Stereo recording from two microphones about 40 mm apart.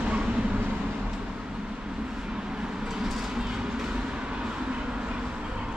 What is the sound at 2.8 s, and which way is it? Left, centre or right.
Vehicle, centre.